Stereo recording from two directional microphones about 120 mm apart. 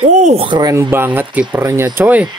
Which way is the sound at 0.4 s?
40° right (ahead or behind).